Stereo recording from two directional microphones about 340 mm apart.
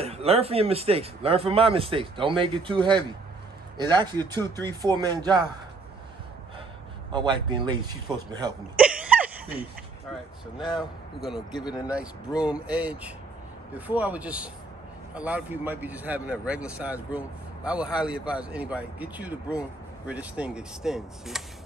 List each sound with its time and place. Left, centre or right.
0.0 s speech: centre
7.1 s speech: centre
11.5 s speech: centre
12.4 s speech: centre